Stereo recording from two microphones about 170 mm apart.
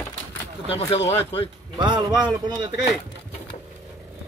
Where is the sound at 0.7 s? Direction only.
35° left (ahead or behind).